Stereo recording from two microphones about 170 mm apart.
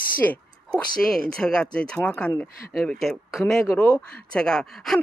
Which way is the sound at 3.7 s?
15° left (ahead or behind).